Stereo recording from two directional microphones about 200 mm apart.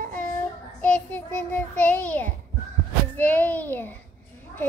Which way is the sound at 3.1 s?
10° left (ahead or behind).